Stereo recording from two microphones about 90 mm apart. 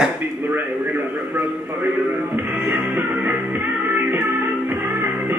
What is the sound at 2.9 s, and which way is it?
Music, 20° right (ahead or behind).